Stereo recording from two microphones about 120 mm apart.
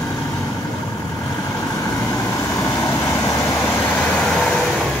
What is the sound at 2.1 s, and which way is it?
Vehicle, 25° left (ahead or behind).